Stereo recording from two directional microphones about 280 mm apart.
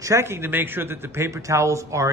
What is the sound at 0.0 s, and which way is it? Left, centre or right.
A man's voice, centre.